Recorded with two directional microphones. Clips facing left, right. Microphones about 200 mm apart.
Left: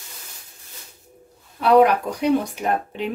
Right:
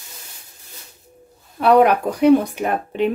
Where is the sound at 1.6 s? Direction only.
55° right (ahead or behind).